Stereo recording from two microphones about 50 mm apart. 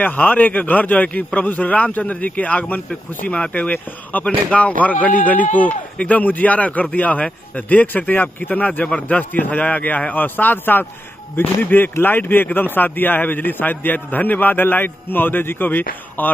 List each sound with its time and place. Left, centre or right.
0.0 s a man's voice: left